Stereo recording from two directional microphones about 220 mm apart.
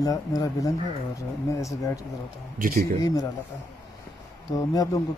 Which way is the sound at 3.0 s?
15° left (ahead or behind).